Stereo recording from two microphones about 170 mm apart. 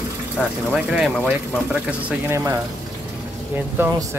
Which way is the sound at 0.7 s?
Centre (ahead or behind).